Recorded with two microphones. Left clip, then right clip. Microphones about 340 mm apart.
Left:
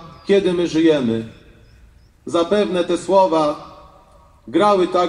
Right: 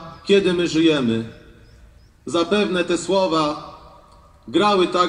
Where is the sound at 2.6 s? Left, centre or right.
Left.